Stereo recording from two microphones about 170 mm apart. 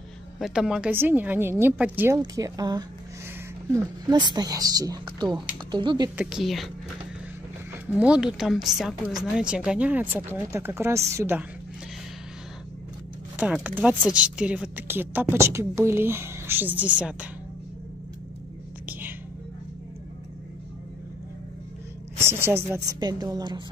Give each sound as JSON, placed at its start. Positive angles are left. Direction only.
{"t": 0.4, "sound": "speech", "side_deg": -5}
{"t": 2.1, "sound": "speech", "side_deg": -20}
{"t": 6.1, "sound": "speech", "side_deg": 0}
{"t": 7.8, "sound": "speech", "side_deg": -5}
{"t": 13.4, "sound": "speech", "side_deg": -10}
{"t": 18.9, "sound": "music", "side_deg": -10}
{"t": 22.2, "sound": "a sound", "side_deg": -15}
{"t": 22.7, "sound": "speech", "side_deg": -25}